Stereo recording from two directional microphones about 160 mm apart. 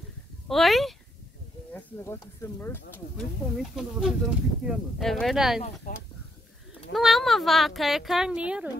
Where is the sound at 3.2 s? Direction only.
Centre (ahead or behind).